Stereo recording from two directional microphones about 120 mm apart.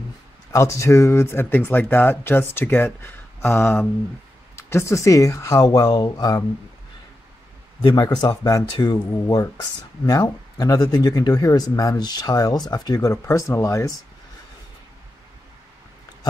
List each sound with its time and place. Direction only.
0.5 s speech: 25° left (ahead or behind)
7.8 s speech: 35° left (ahead or behind)
10.0 s speech: 30° left (ahead or behind)